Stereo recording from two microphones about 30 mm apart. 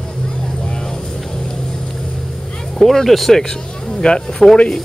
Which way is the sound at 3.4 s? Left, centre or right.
Left.